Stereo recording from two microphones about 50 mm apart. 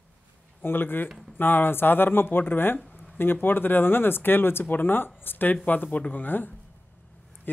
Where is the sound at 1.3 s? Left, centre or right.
Left.